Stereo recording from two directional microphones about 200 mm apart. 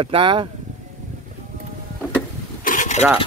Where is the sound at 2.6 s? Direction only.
40° left (ahead or behind).